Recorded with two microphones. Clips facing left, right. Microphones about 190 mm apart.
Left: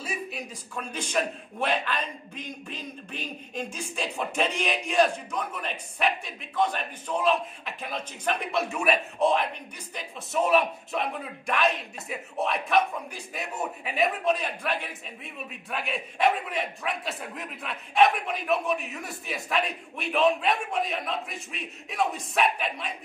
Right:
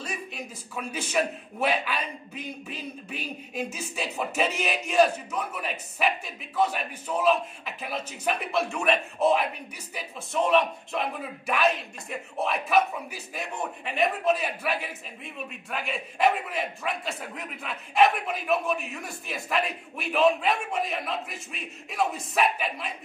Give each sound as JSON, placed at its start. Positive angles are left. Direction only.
{"t": 0.0, "sound": "speech", "side_deg": 5}